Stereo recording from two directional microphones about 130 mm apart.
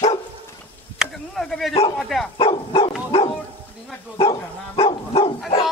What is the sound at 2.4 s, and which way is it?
Dog, 40° left (ahead or behind).